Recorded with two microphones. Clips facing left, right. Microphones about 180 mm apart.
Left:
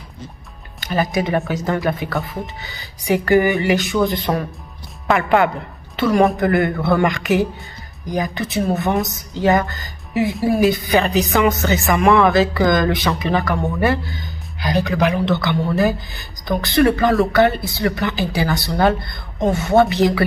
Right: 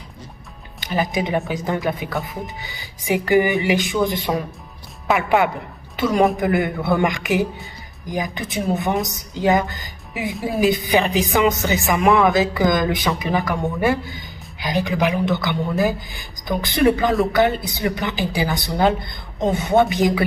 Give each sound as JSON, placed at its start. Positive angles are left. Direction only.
{"t": 0.7, "sound": "speech", "side_deg": -15}
{"t": 5.0, "sound": "speech", "side_deg": -5}
{"t": 5.9, "sound": "a woman's voice", "side_deg": -20}